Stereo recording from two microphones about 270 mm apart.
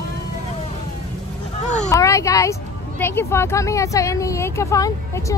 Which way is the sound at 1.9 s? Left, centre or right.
Centre.